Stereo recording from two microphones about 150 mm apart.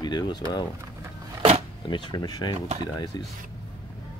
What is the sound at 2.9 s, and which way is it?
Speech, 25° left (ahead or behind).